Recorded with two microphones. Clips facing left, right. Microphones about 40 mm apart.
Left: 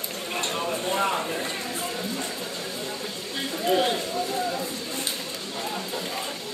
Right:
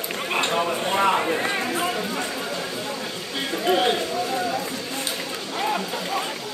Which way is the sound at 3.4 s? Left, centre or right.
Right.